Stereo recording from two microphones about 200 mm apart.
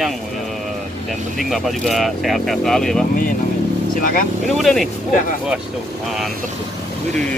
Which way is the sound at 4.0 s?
45° left (ahead or behind).